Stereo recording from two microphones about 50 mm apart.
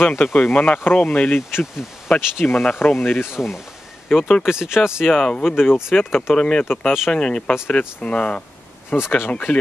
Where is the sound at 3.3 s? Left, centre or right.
Centre.